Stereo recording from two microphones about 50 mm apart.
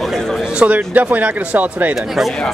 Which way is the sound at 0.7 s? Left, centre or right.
Right.